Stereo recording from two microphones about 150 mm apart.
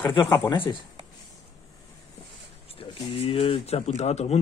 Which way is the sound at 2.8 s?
40° left (ahead or behind).